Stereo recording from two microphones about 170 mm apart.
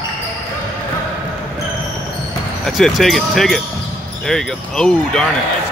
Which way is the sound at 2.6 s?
Centre (ahead or behind).